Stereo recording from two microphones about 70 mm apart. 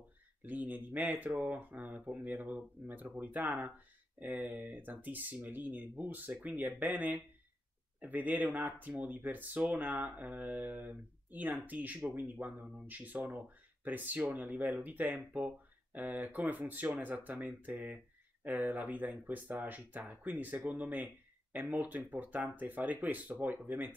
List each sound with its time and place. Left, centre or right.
0.4 s speech: right
1.3 s speech: centre
1.6 s speech: right
20.8 s a sound: right
21.5 s speech: right